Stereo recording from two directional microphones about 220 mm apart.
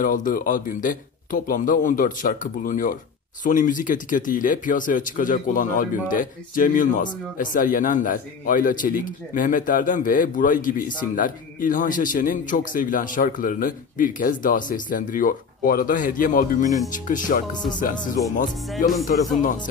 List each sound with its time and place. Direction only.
0.0 s speech: 40° left (ahead or behind)